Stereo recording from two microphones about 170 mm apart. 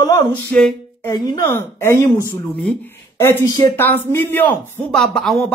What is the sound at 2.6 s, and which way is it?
Speech, 5° left (ahead or behind).